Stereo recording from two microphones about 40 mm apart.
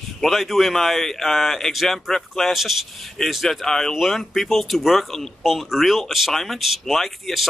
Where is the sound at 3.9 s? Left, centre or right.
Centre.